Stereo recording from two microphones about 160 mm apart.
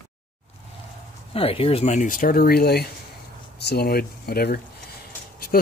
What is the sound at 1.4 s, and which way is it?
Speech, 35° left (ahead or behind).